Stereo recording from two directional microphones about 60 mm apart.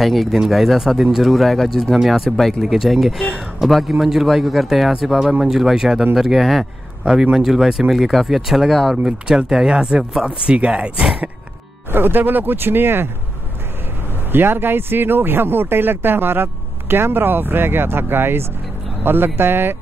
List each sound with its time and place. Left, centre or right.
0.0 s a man's voice: centre
8.9 s speech: centre
11.9 s speech: right
14.3 s speech: right